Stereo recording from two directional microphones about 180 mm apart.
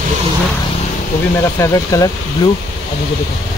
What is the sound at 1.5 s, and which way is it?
Speech, 15° left (ahead or behind).